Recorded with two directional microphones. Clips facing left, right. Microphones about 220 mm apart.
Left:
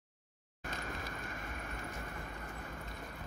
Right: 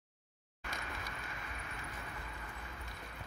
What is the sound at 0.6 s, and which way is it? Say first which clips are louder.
Vehicle: left 3 dB; 45° left (ahead or behind).